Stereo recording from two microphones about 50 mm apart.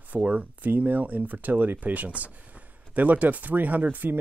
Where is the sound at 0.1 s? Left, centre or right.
Right.